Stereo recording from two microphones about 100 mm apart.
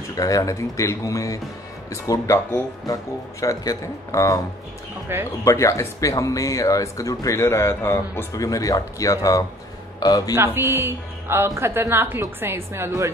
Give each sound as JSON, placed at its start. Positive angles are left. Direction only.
{"t": 0.1, "sound": "speech", "side_deg": 35}
{"t": 5.4, "sound": "a man's voice", "side_deg": 30}
{"t": 10.3, "sound": "a woman's voice", "side_deg": -25}